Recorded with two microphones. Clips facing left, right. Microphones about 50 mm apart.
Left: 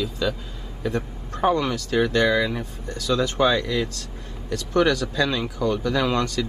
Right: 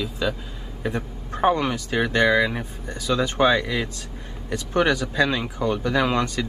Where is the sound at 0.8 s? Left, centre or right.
Right.